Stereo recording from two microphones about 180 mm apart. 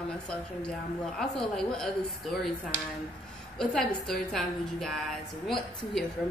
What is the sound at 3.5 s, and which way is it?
A woman's voice, centre (ahead or behind).